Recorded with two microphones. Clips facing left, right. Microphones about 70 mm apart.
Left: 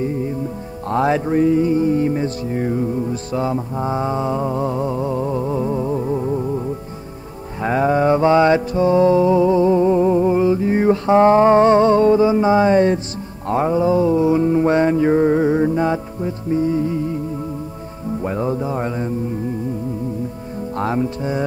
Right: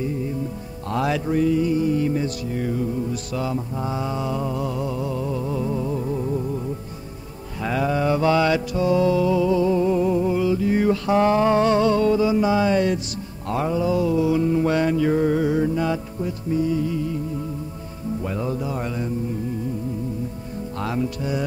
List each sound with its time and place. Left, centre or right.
0.8 s mantra: left
7.6 s mantra: left
18.2 s music: left
20.7 s music: left